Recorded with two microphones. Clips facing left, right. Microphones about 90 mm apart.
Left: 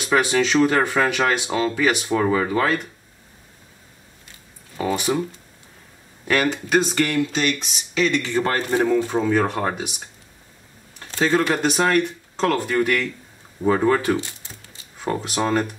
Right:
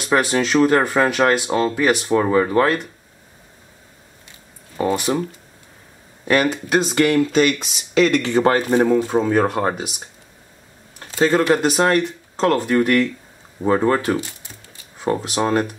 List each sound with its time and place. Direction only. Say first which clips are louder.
0.0 s speech: right 1 dB; centre (ahead or behind)
4.7 s speech: right 3 dB; 5° right (ahead or behind)
6.2 s speech: right 3 dB; 10° right (ahead or behind)
7.1 s speech: right 6 dB; 45° right (ahead or behind)
8.4 s speech: right 7 dB; 25° right (ahead or behind)
9.3 s speech: right 3 dB; 10° right (ahead or behind)
11.0 s a sound: right 4 dB; 10° right (ahead or behind)
11.4 s speech: right 4 dB; 5° right (ahead or behind)